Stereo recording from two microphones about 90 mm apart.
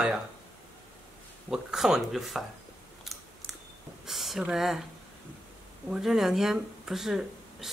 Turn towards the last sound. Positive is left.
turn(degrees=-5)  # may be behind; listen again after turning